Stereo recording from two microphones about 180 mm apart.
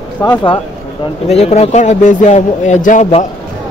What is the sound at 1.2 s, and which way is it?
A man's voice, 35° left (ahead or behind).